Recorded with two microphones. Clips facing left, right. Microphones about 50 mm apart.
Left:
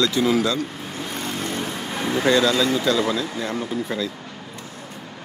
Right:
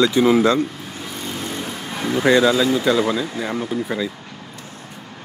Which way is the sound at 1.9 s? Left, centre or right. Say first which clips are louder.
Right 2 dB; centre.